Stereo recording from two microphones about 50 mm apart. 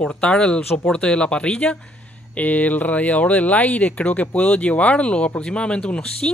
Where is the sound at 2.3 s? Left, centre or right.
Left.